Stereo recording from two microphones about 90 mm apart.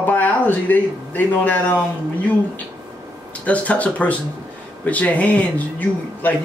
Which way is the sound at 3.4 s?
15° left (ahead or behind).